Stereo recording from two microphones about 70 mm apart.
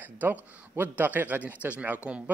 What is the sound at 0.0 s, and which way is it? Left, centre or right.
Speech, right.